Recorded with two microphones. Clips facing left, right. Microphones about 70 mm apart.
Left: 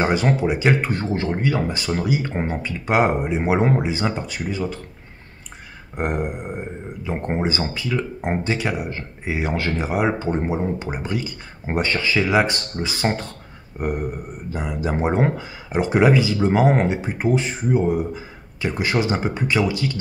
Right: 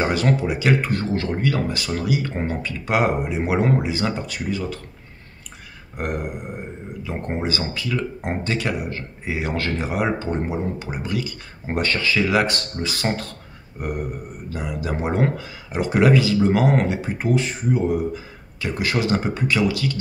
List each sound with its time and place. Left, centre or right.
0.0 s speech: left
6.0 s speech: left